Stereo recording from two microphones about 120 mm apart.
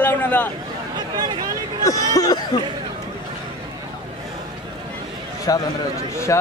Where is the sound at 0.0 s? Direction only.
15° left (ahead or behind).